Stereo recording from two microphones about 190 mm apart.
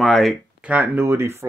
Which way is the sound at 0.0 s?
Centre (ahead or behind).